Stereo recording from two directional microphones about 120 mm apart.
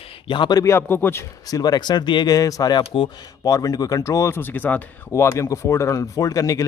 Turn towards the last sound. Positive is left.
turn(degrees=30)  # may be behind; listen again after turning